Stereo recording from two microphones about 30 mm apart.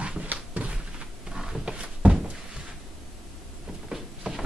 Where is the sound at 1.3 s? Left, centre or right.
Right.